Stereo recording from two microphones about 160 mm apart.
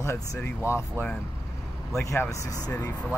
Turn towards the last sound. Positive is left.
turn(degrees=15)  # may be behind; listen again after turning